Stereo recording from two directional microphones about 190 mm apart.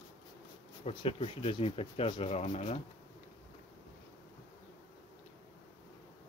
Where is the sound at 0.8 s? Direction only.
30° left (ahead or behind).